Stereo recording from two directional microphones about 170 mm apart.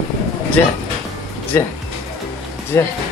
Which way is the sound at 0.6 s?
10° left (ahead or behind).